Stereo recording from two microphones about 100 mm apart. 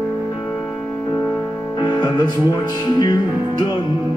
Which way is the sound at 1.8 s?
45° left (ahead or behind).